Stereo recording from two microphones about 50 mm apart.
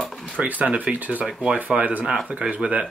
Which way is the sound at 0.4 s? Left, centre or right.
Right.